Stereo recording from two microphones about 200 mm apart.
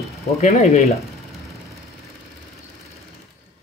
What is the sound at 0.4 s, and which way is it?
Speech, 35° left (ahead or behind).